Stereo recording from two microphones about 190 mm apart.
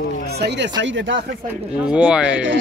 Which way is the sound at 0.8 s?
75° right (ahead or behind).